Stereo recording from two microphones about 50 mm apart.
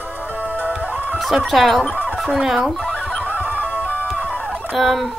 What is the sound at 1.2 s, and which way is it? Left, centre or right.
Chicken, centre.